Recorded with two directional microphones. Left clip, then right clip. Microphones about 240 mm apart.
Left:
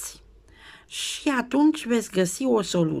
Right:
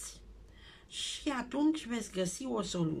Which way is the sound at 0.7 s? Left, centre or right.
Left.